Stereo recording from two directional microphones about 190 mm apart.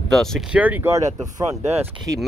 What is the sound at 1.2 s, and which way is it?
Speech, 35° right (ahead or behind).